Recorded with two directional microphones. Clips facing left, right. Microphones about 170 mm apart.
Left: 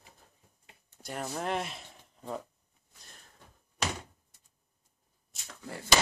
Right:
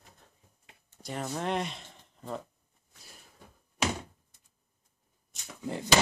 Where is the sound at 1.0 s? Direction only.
Centre (ahead or behind).